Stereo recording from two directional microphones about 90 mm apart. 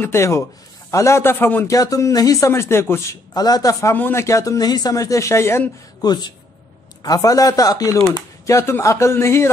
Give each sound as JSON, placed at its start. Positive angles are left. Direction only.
{"t": 0.0, "sound": "a man's voice", "side_deg": 30}
{"t": 1.7, "sound": "speech", "side_deg": 40}
{"t": 3.3, "sound": "speech", "side_deg": 45}
{"t": 3.9, "sound": "speech", "side_deg": 25}
{"t": 5.9, "sound": "speech", "side_deg": 50}
{"t": 8.5, "sound": "a man's voice", "side_deg": 30}